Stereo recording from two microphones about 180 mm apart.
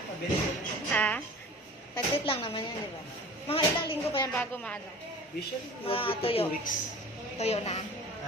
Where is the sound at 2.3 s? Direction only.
30° left (ahead or behind).